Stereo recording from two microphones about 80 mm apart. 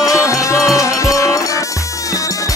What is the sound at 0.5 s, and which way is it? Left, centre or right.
Music, left.